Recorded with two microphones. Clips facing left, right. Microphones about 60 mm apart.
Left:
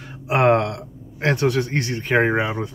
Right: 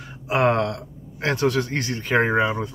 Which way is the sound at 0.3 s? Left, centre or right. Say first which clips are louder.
Left 3 dB; left.